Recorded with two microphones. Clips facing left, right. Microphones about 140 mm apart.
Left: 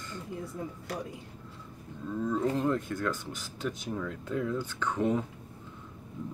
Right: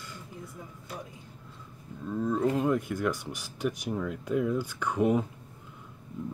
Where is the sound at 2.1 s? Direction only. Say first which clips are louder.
Right 2 dB; 15° right (ahead or behind).